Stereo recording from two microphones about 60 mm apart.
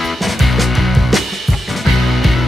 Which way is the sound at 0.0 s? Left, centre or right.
Centre.